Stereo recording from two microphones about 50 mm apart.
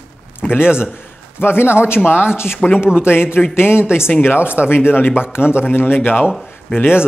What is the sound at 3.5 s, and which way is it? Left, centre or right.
A man's voice, left.